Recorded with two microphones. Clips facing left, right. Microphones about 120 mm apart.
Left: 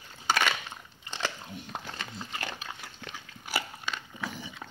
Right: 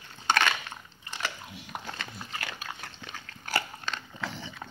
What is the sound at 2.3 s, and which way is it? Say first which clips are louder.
Dog: even; 20° left (ahead or behind).